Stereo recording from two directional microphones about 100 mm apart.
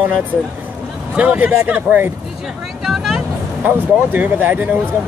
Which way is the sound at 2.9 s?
Centre (ahead or behind).